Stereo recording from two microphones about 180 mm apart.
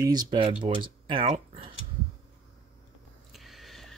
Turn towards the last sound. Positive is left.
turn(degrees=0)  # may be behind; listen again after turning